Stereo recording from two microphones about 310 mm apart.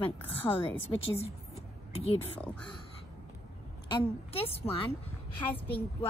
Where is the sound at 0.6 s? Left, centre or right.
Centre.